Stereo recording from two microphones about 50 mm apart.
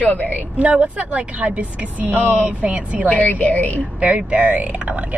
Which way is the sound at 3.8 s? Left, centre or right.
Right.